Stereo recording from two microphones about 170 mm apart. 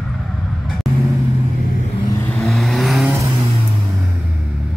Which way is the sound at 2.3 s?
Centre (ahead or behind).